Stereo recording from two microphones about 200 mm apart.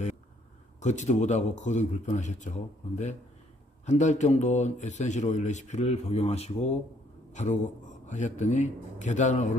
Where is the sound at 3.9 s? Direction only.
35° left (ahead or behind).